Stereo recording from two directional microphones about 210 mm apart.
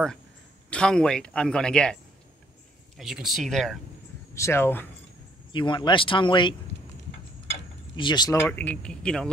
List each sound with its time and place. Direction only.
0.7 s speech: 5° left (ahead or behind)
3.0 s speech: centre (ahead or behind)
4.4 s speech: 10° left (ahead or behind)
5.5 s speech: 20° left (ahead or behind)
7.9 s speech: 20° left (ahead or behind); by 9.3 s 5° left (ahead or behind)